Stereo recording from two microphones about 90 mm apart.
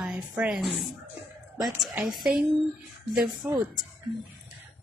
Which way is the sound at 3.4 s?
20° right (ahead or behind).